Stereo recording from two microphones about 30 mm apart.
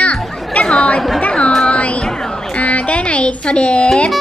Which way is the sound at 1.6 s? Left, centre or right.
Left.